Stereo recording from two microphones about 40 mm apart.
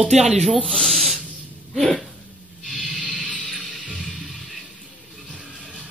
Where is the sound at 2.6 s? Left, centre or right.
Centre.